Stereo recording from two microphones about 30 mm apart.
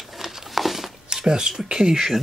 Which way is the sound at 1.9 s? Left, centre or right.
Centre.